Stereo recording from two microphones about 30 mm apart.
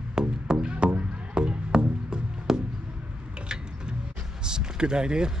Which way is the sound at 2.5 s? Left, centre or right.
Centre.